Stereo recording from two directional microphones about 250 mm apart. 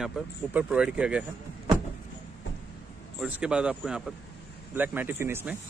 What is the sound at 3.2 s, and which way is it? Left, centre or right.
Speech, centre.